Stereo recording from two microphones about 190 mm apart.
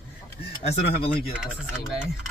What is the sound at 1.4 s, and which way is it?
Speech, 5° right (ahead or behind).